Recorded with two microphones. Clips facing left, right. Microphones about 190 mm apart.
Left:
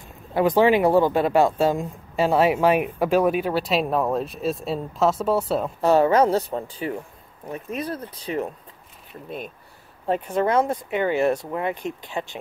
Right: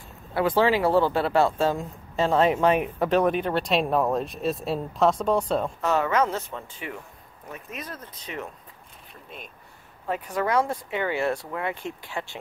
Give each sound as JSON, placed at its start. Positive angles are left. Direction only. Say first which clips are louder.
{"t": 0.3, "sound": "speech", "louder": "left 4 dB", "side_deg": 15}
{"t": 5.8, "sound": "speech", "louder": "left 9 dB", "side_deg": 35}
{"t": 10.0, "sound": "speech", "louder": "left 5 dB", "side_deg": 30}